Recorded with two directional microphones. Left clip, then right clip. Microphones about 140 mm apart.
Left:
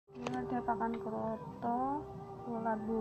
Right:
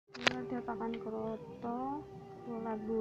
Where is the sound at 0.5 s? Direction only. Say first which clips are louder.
Left 4 dB; 20° right (ahead or behind).